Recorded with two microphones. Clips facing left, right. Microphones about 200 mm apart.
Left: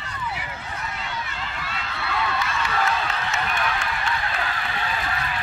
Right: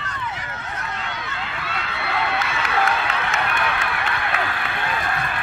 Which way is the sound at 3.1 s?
60° right (ahead or behind).